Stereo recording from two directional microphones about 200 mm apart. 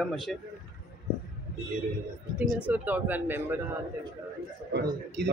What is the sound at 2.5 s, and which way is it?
Speech, 5° right (ahead or behind).